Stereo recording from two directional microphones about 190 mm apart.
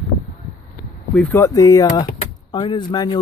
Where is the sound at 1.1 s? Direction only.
10° left (ahead or behind).